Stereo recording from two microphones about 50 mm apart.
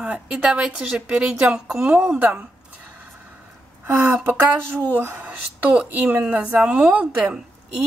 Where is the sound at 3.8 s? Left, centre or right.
Right.